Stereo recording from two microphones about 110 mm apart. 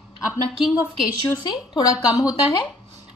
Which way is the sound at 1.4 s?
40° left (ahead or behind).